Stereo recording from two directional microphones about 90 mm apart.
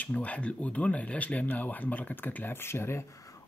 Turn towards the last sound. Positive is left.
turn(degrees=35)  # may be behind; listen again after turning